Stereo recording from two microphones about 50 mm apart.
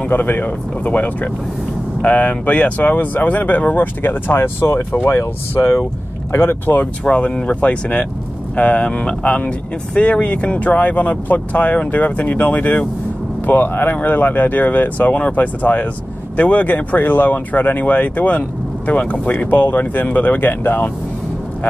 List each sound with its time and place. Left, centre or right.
0.1 s speech: left
4.4 s speech: left
6.3 s speech: left
7.2 s speech: left